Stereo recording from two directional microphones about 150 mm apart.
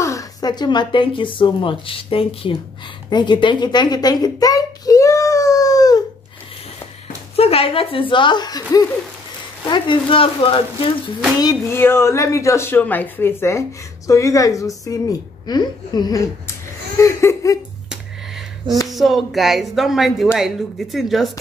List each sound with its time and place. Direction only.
0.0 s a woman's voice: 20° left (ahead or behind); by 2.5 s 40° left (ahead or behind)
3.1 s a sound: 30° left (ahead or behind)
7.3 s a woman's voice: 40° left (ahead or behind)
11.7 s a woman's voice: 15° left (ahead or behind)
18.9 s speech: centre (ahead or behind)